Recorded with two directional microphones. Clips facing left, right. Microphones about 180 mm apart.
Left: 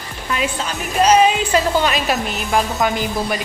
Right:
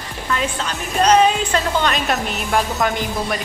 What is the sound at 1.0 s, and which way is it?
Speech, 10° left (ahead or behind).